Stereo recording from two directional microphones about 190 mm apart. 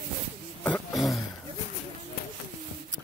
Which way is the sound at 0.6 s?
5° left (ahead or behind).